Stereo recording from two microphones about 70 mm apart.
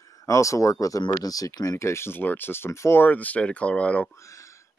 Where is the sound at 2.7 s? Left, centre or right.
Left.